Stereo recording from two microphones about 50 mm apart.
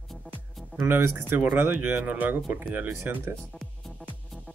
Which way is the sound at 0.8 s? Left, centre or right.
Right.